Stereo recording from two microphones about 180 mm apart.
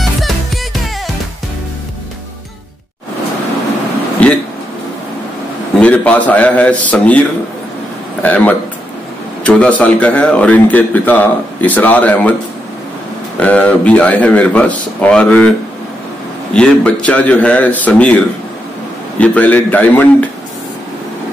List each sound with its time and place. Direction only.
4.2 s a sound: 10° left (ahead or behind)
5.8 s a man's voice: 5° left (ahead or behind)
8.2 s a man's voice: 10° left (ahead or behind)
13.4 s a man's voice: 10° left (ahead or behind)
16.5 s a man's voice: 5° left (ahead or behind)